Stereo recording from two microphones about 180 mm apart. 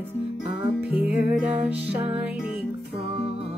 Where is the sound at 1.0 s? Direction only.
5° right (ahead or behind).